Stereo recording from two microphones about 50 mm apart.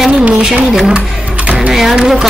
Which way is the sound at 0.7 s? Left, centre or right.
Centre.